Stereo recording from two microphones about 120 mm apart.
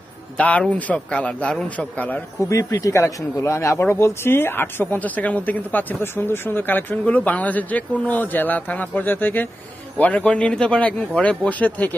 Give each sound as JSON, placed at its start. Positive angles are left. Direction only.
{"t": 0.4, "sound": "speech", "side_deg": 10}
{"t": 2.5, "sound": "speech", "side_deg": 25}